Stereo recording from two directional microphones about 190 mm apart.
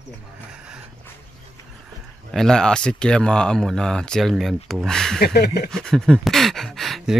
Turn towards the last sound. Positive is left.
turn(degrees=0)  # may be behind; listen again after turning